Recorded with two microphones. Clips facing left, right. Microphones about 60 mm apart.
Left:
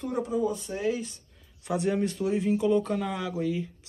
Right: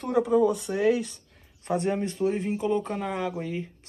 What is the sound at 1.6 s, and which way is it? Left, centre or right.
Speech, right.